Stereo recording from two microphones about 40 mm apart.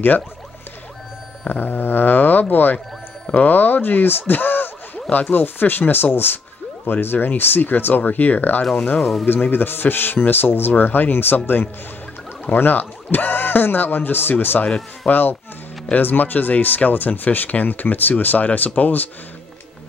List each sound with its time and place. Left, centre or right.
1.5 s speech: left
9.2 s speech: left